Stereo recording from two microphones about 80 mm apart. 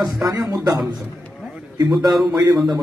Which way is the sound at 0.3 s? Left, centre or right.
Right.